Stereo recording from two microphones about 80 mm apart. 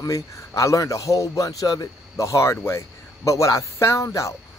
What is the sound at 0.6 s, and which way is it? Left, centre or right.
A man's voice, left.